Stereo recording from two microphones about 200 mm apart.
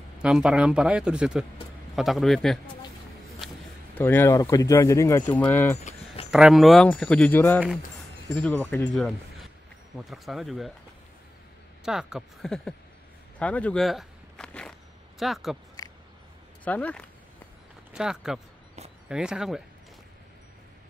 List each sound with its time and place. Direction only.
0.2 s speech: 5° right (ahead or behind)
3.4 s a sound: centre (ahead or behind)
3.9 s speech: 10° left (ahead or behind)
6.3 s speech: centre (ahead or behind)
11.8 s speech: 5° right (ahead or behind)
15.8 s a sound: 20° left (ahead or behind)
16.6 s speech: 5° left (ahead or behind)
17.9 s speech: 5° right (ahead or behind)